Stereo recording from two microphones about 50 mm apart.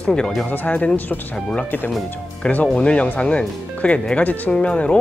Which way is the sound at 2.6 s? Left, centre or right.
Left.